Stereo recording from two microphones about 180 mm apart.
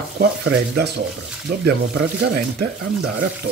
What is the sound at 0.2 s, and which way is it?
Speech, 65° right (ahead or behind).